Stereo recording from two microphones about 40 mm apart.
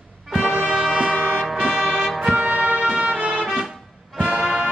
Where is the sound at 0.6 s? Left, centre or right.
Right.